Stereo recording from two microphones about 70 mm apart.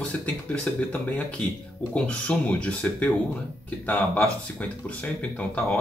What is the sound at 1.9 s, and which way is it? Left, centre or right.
Speech, centre.